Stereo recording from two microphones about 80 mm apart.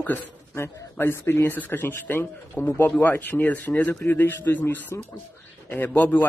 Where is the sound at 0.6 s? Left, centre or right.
Left.